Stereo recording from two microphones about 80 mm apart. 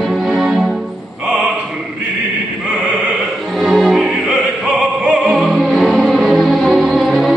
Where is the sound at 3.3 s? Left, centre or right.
Centre.